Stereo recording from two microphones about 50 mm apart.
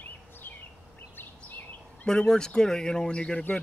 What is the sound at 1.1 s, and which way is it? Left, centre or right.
Bird vocalization, left.